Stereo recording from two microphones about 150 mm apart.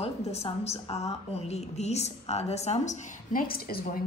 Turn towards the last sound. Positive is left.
turn(degrees=75)  # may be behind; listen again after turning